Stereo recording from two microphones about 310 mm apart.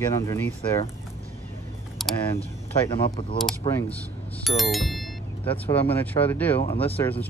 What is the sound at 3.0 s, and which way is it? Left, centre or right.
Speech, centre.